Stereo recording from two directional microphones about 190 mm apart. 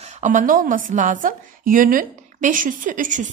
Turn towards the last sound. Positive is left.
turn(degrees=-45)  # may be behind; listen again after turning